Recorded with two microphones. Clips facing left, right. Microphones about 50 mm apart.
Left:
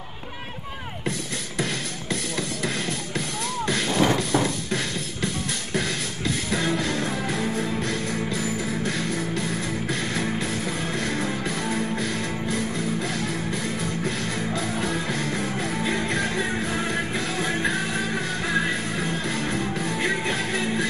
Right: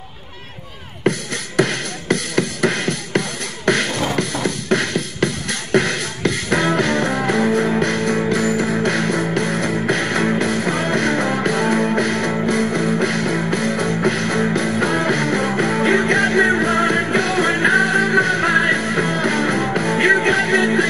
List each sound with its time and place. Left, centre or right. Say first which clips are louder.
1.1 s music: right 10 dB; right
7.4 s music: right 9 dB; right